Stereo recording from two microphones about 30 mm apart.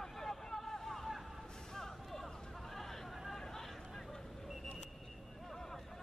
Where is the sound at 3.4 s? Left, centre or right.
Centre.